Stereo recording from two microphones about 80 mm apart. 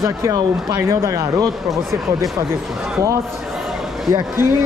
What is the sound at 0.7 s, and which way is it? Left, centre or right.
Speech, right.